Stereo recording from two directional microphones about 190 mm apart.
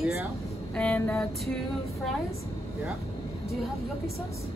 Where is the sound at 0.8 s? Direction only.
5° left (ahead or behind).